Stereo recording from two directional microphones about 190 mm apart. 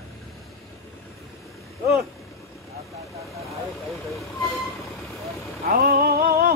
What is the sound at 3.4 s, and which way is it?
Vehicle, 15° left (ahead or behind).